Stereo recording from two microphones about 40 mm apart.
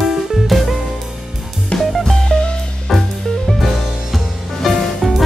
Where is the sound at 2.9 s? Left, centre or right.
Centre.